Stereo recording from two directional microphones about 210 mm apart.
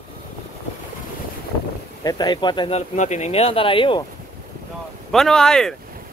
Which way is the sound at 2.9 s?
35° left (ahead or behind).